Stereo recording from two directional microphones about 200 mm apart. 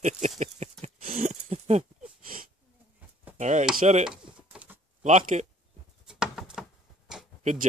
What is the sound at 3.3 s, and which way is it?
Chop, 35° right (ahead or behind).